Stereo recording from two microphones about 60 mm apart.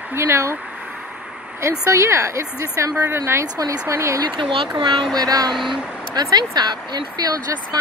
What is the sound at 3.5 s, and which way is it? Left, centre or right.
Speech, right.